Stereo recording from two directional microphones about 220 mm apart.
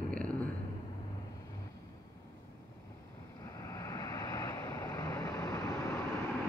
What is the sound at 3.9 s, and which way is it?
Vehicle, 15° left (ahead or behind).